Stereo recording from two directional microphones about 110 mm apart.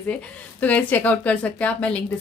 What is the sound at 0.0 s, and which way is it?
A woman's voice, 15° left (ahead or behind).